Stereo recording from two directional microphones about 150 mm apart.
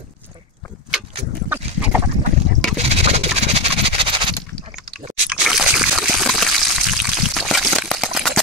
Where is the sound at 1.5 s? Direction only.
10° right (ahead or behind).